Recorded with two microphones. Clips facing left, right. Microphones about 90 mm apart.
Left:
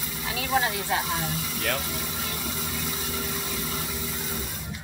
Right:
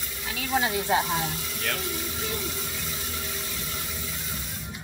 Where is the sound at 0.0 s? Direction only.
Centre (ahead or behind).